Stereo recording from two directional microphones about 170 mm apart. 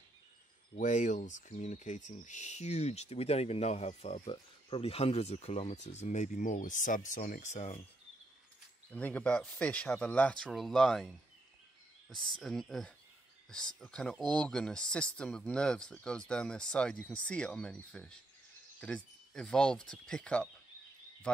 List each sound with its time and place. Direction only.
0.7 s speech: 45° left (ahead or behind)
8.9 s speech: 10° left (ahead or behind)